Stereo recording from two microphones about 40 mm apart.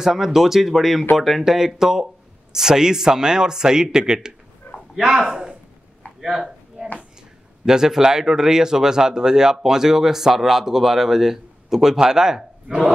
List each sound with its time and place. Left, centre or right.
0.0 s a man's voice: centre
6.2 s a sound: centre
7.6 s speech: centre